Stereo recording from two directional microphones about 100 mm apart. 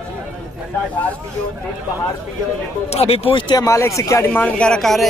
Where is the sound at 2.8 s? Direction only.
90° left.